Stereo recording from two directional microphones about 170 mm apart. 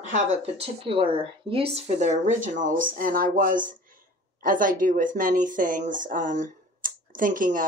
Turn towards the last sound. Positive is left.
turn(degrees=-55)  # may be behind; listen again after turning